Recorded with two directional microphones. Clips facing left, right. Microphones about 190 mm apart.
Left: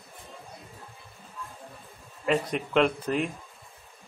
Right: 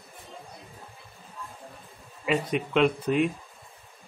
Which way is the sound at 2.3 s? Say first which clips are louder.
Even; centre (ahead or behind).